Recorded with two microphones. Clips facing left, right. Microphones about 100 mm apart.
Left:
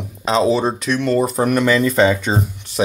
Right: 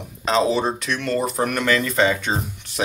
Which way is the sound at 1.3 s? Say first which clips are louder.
Left 5 dB; 20° left (ahead or behind).